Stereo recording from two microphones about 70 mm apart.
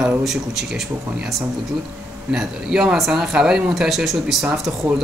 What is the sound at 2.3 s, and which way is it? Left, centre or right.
Speech, centre.